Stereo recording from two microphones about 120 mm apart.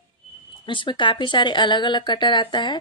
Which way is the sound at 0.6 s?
45° left (ahead or behind).